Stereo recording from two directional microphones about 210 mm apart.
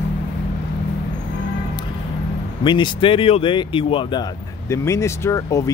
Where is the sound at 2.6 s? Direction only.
25° left (ahead or behind).